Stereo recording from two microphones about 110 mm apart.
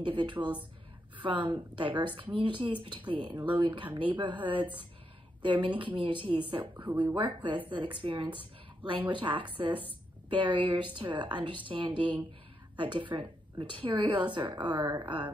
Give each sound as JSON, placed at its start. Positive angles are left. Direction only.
{"t": 0.0, "sound": "speech", "side_deg": -50}
{"t": 0.4, "sound": "speech", "side_deg": -15}
{"t": 1.2, "sound": "a woman's voice", "side_deg": -50}
{"t": 6.8, "sound": "speech", "side_deg": -15}
{"t": 7.2, "sound": "speech", "side_deg": -50}